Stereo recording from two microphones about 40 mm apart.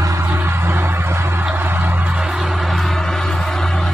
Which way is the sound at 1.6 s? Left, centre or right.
Right.